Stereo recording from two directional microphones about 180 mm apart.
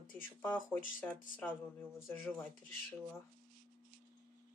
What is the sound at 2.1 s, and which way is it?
Speech, 10° left (ahead or behind).